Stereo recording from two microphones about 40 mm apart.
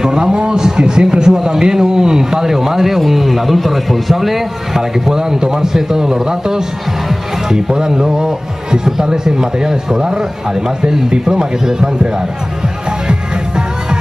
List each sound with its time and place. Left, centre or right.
0.0 s a man's voice: centre
13.1 s music: right